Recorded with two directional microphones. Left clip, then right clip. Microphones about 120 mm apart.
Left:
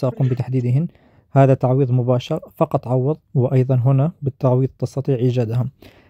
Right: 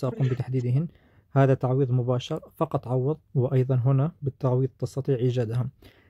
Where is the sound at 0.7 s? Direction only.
45° left (ahead or behind).